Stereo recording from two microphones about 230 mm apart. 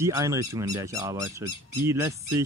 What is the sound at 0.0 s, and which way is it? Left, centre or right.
Speech, centre.